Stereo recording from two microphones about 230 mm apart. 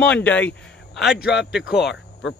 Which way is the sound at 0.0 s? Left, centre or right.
Centre.